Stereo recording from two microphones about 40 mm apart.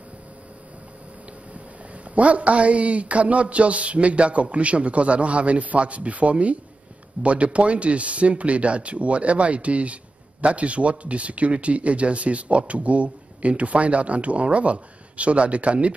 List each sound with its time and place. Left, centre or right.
2.1 s speech: right